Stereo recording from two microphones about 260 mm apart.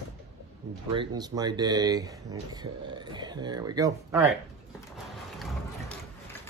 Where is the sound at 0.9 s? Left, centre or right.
Centre.